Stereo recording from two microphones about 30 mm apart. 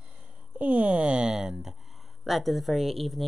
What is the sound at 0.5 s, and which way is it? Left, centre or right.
Speech, right.